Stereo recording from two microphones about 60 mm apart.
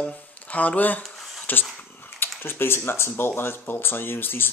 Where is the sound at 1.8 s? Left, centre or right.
Left.